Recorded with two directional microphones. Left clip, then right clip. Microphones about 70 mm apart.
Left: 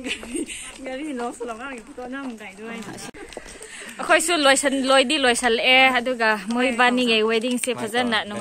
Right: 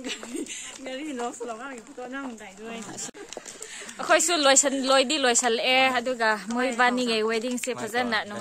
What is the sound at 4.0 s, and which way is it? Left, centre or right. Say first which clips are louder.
A woman's voice: left 3 dB; centre.